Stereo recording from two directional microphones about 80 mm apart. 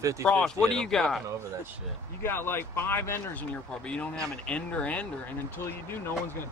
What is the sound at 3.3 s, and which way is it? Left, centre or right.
Speech, centre.